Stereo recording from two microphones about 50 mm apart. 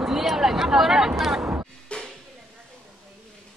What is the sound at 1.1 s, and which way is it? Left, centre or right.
Speech, centre.